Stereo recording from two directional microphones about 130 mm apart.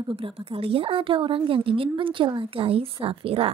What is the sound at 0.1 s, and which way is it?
A woman's voice, 50° right (ahead or behind).